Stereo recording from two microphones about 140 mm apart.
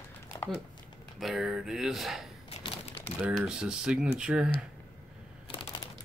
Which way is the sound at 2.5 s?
40° left (ahead or behind).